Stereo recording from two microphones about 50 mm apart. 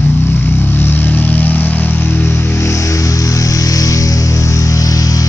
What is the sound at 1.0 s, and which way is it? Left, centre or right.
Vehicle, left.